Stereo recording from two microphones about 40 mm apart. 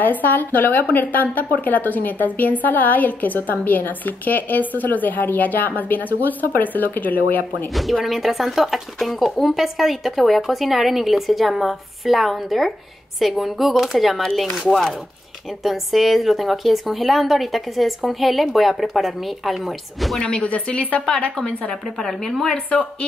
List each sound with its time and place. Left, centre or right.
0.0 s a woman's voice: left
7.7 s a woman's voice: centre
14.7 s a woman's voice: centre
15.6 s a woman's voice: centre
20.2 s speech: left
21.4 s a woman's voice: centre
22.0 s a woman's voice: centre
22.7 s speech: left